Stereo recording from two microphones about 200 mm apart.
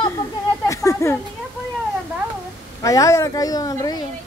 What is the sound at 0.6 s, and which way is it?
Speech, 15° left (ahead or behind).